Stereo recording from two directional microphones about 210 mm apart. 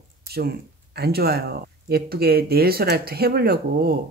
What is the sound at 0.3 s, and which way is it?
Speech, 50° right (ahead or behind).